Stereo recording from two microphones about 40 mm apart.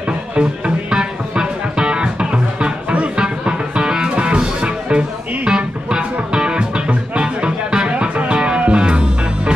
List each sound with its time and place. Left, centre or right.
0.4 s music: right